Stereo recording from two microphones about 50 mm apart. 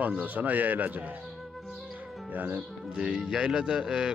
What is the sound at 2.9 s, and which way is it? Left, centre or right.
Speech, right.